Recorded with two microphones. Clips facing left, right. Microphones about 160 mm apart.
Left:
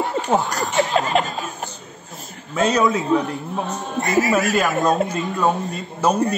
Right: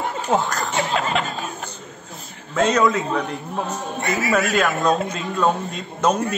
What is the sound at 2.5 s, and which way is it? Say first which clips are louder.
Speech: even; 5° left (ahead or behind).